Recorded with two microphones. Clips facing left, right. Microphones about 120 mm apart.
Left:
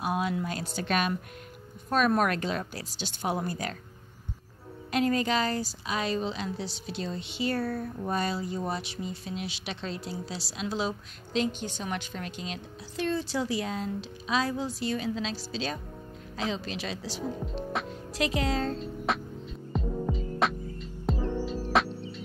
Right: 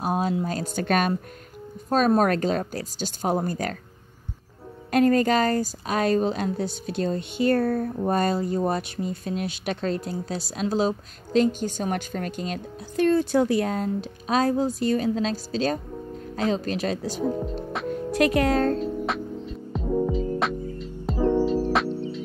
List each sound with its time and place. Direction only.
0.0 s speech: 40° right (ahead or behind)
1.9 s speech: 35° right (ahead or behind)
4.9 s a woman's voice: 45° right (ahead or behind)
17.8 s music: 55° right (ahead or behind)
19.0 s music: centre (ahead or behind)